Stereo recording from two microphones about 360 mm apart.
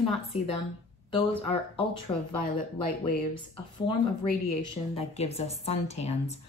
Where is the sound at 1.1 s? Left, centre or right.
Centre.